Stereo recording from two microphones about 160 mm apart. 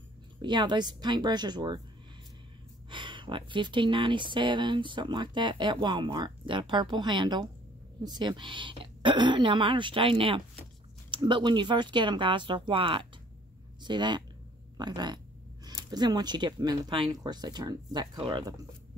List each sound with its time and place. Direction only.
0.4 s speech: 30° right (ahead or behind)
2.9 s speech: 30° right (ahead or behind)